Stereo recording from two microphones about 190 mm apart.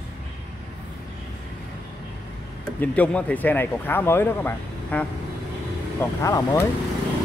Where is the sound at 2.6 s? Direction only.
5° left (ahead or behind).